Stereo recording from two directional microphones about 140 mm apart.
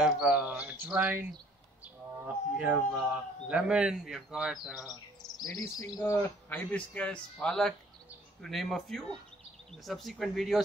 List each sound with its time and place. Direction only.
0.0 s speech: 5° right (ahead or behind)
2.2 s speech: 10° right (ahead or behind)
5.4 s insect: 25° left (ahead or behind)
6.5 s a man's voice: 10° left (ahead or behind)